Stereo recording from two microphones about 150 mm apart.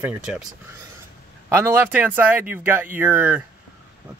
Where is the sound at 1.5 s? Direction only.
20° right (ahead or behind).